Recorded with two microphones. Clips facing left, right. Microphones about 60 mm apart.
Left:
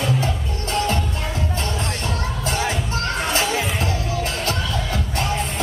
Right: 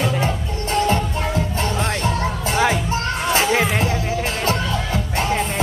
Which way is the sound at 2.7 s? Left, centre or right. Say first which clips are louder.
Right 3 dB; right.